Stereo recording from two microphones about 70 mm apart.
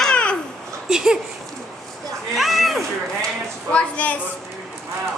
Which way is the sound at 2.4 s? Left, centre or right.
Centre.